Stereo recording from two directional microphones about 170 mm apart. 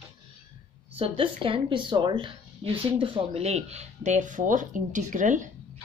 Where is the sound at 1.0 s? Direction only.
30° right (ahead or behind).